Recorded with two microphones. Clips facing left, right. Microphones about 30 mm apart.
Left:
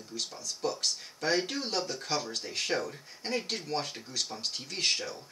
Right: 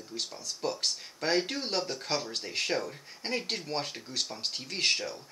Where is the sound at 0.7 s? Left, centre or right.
Right.